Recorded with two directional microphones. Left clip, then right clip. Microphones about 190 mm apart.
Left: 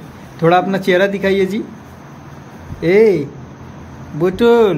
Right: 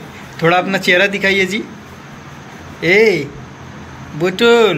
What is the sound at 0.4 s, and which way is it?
A man's voice, 30° left (ahead or behind).